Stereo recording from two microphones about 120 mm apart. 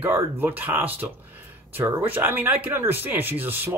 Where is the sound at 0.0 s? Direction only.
15° right (ahead or behind).